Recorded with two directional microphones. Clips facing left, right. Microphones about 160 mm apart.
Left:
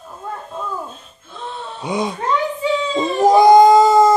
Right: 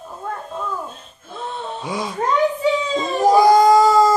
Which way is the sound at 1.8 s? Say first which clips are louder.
Left 6 dB; 20° left (ahead or behind).